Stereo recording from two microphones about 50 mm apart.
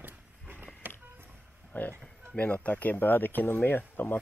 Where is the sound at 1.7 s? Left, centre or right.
Left.